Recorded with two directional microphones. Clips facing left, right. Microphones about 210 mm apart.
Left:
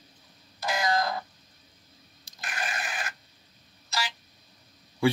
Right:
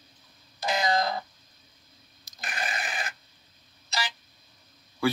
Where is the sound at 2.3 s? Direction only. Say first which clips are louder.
Right 3 dB; 30° left (ahead or behind).